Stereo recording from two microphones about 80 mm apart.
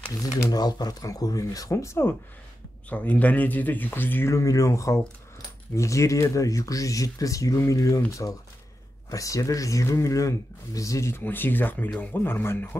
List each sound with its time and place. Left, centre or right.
0.5 s speech: left
2.9 s speech: centre
4.3 s speech: left